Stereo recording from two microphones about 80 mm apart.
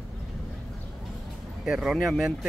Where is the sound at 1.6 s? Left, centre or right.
Centre.